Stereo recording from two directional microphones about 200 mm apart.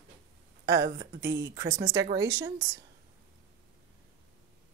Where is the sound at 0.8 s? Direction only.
55° right (ahead or behind).